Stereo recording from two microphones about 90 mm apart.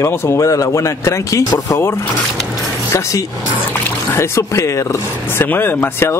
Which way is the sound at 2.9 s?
35° left (ahead or behind).